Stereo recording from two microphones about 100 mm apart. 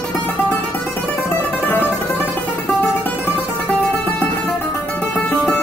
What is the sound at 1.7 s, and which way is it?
Music, 20° left (ahead or behind).